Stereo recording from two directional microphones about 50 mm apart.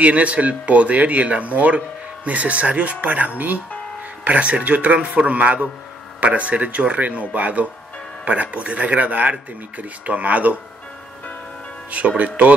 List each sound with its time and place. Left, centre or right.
0.0 s speech: right
11.9 s speech: right